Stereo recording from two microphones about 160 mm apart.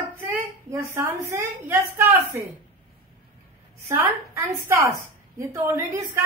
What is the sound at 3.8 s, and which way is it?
A woman's voice, 20° right (ahead or behind).